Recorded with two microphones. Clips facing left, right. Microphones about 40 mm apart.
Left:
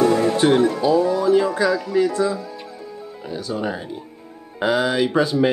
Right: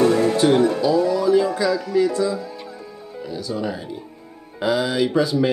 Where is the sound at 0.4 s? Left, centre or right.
Left.